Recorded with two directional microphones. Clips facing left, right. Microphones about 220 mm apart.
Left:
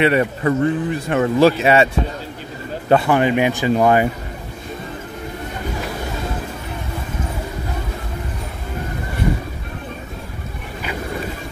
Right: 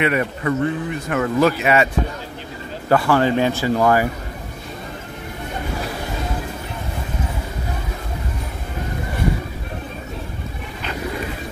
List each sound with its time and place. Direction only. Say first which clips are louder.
0.0 s speech: left 4 dB; 30° left (ahead or behind)
2.9 s speech: left 1 dB; 20° left (ahead or behind)